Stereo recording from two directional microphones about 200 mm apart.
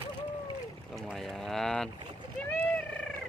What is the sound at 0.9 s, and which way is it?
Boat, centre (ahead or behind).